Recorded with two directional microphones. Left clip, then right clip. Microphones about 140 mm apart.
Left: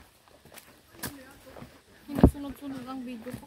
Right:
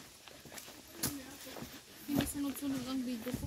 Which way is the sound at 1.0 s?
45° left (ahead or behind).